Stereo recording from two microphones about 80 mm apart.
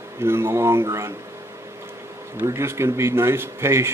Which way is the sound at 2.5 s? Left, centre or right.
Right.